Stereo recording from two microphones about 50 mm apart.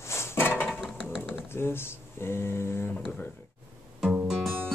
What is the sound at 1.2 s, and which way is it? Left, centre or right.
Speech, left.